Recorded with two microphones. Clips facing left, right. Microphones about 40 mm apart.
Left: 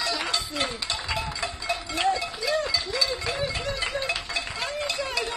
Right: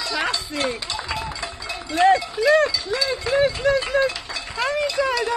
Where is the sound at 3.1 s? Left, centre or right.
Right.